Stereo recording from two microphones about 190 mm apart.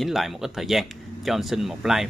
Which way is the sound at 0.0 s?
Centre (ahead or behind).